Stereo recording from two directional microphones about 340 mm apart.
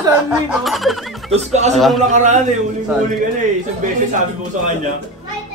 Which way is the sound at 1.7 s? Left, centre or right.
Centre.